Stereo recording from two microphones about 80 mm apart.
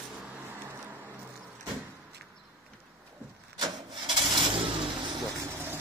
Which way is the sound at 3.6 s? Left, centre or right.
Right.